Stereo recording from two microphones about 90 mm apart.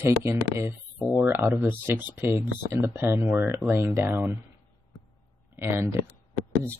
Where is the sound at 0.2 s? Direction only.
30° right (ahead or behind).